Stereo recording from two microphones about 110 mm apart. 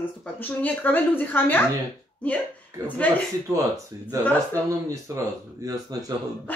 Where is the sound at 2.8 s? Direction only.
30° right (ahead or behind).